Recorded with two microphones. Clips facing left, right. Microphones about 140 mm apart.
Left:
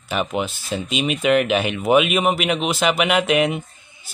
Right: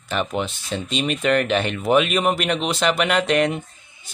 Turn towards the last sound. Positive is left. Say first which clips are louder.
# left 1 dB
turn(degrees=5)  # may be behind; listen again after turning